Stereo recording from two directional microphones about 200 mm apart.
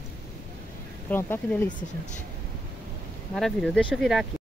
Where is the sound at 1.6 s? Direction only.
40° left (ahead or behind).